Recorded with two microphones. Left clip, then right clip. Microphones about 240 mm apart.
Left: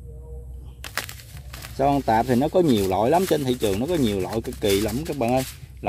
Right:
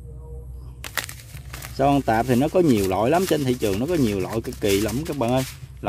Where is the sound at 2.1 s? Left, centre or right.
Centre.